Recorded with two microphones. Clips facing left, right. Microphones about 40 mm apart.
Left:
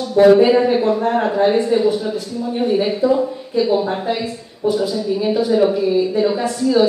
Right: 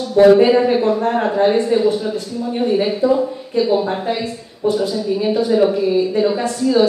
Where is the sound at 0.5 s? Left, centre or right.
Centre.